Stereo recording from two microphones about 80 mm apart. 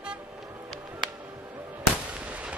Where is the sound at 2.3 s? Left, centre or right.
Centre.